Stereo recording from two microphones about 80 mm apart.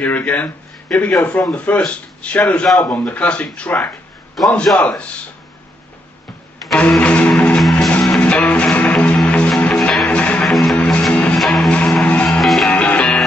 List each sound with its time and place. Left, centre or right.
0.0 s speech: centre
6.7 s music: centre
10.0 s music: centre
10.5 s music: centre
11.3 s music: centre
11.7 s music: centre
12.3 s music: centre
12.6 s music: centre